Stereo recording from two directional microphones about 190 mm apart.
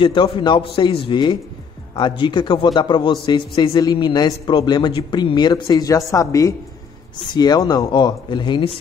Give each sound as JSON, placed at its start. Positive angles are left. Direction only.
{"t": 0.0, "sound": "a woman's voice", "side_deg": 25}